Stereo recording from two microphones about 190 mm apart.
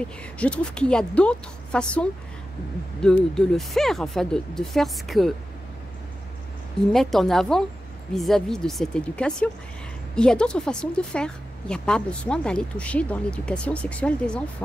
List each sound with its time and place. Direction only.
0.4 s a woman's voice: 5° left (ahead or behind)
6.9 s a woman's voice: centre (ahead or behind)